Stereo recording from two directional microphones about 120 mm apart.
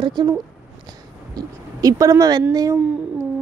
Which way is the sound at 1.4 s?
30° right (ahead or behind).